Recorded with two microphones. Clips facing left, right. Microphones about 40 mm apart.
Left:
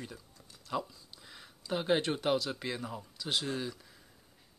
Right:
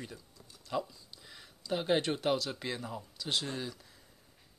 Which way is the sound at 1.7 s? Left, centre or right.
Centre.